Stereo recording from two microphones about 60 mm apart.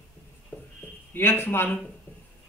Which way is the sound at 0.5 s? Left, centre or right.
Left.